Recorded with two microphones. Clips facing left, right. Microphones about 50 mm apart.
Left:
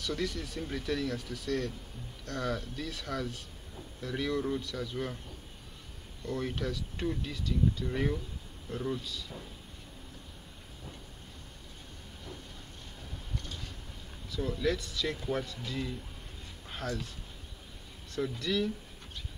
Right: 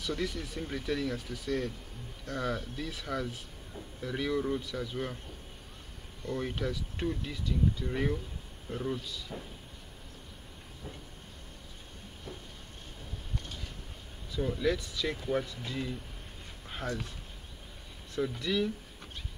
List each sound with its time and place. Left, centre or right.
0.0 s speech: centre
6.2 s a man's voice: centre
9.3 s speech: right
14.3 s speech: centre
18.4 s speech: centre